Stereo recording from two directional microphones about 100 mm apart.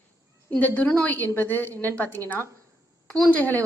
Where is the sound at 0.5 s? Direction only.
15° left (ahead or behind).